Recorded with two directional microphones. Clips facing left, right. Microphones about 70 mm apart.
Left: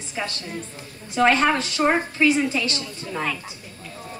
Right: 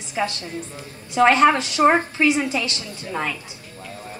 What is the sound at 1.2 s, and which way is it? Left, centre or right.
A woman's voice, right.